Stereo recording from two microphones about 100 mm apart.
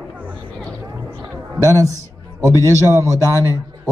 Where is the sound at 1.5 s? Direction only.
35° right (ahead or behind).